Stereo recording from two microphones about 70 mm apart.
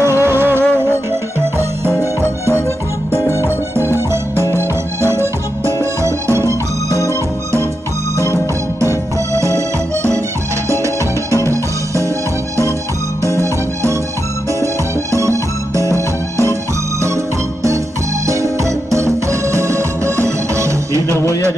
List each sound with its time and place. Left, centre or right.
0.0 s music: right
3.4 s music: right
8.8 s music: right
11.3 s music: right
15.1 s music: right
18.2 s music: right